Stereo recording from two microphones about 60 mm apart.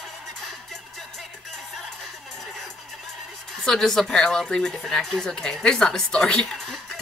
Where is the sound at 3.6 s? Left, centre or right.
Centre.